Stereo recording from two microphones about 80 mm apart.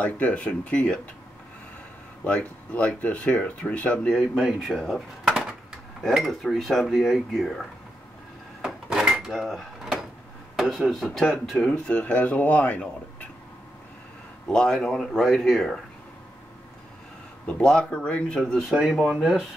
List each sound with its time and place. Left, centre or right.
0.0 s speech: centre
2.2 s speech: centre
4.4 s speech: centre
6.0 s dishes: centre
8.6 s a sound: centre
10.5 s speech: centre
11.1 s dishes: centre
11.7 s speech: centre
14.5 s dishes: centre
17.5 s speech: centre
18.7 s dishes: centre